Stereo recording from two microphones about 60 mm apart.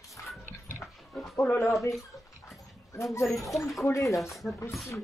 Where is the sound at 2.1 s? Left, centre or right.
Left.